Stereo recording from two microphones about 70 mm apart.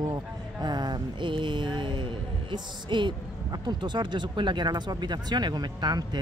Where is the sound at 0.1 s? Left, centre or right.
Right.